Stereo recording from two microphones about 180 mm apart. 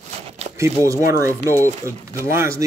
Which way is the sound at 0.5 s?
15° right (ahead or behind).